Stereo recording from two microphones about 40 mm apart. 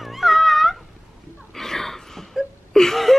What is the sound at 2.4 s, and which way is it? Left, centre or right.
Wail, centre.